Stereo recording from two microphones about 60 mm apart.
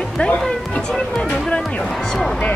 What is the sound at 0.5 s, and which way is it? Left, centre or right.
Speech, centre.